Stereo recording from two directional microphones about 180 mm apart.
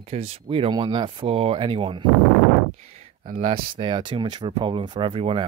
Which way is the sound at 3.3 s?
30° right (ahead or behind).